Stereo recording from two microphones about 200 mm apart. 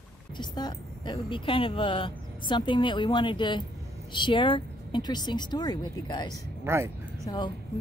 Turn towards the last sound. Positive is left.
turn(degrees=20)  # may be behind; listen again after turning